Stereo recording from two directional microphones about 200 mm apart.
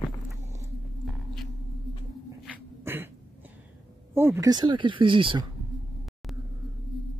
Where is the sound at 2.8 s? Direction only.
10° right (ahead or behind).